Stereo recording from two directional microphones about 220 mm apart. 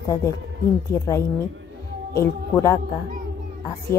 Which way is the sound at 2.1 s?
15° left (ahead or behind).